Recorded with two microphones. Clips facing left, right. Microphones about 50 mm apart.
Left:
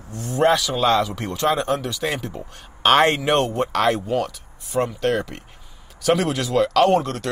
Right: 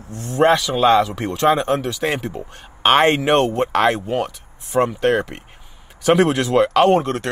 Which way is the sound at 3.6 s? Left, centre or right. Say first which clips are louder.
Right 3 dB; right.